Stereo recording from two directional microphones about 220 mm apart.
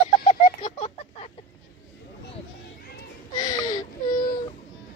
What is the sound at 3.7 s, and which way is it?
Baby cry, 40° left (ahead or behind).